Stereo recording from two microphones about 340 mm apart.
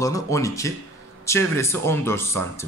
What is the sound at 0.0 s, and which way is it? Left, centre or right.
Speech, centre.